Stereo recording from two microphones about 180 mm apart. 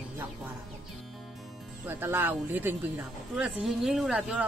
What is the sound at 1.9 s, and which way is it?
A woman's voice, 10° right (ahead or behind).